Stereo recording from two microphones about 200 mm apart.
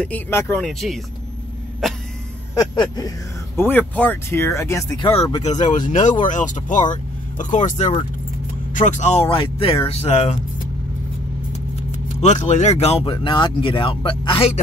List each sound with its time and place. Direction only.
0.0 s speech: 10° left (ahead or behind)
2.5 s speech: 20° left (ahead or behind)
12.2 s speech: 35° left (ahead or behind)